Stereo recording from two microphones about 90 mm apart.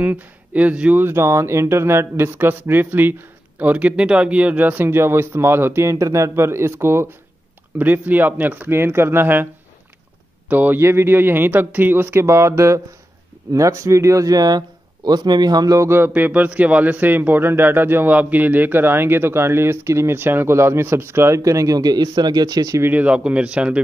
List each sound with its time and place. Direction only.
0.0 s speech: 20° right (ahead or behind)
1.0 s a man's voice: 30° right (ahead or behind)
10.5 s a man's voice: 20° right (ahead or behind); by 15.8 s 45° right (ahead or behind)
15.8 s a man's voice: 30° right (ahead or behind)
16.1 s a man's voice: 15° right (ahead or behind); by 22.8 s 45° right (ahead or behind)
22.8 s speech: 20° right (ahead or behind)